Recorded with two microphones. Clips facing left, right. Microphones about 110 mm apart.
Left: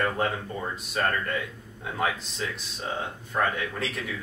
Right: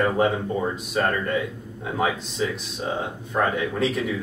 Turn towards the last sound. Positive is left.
turn(degrees=0)  # may be behind; listen again after turning